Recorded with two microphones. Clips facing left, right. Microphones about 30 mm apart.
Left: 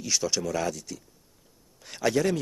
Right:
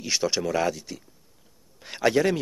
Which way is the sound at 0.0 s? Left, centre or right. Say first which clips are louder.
Right 2 dB; right.